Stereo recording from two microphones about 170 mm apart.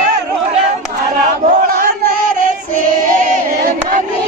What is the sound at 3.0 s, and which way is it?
Singing, 50° right (ahead or behind).